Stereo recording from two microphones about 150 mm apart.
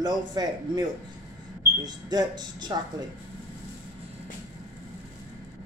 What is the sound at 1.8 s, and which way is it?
Speech, 30° right (ahead or behind).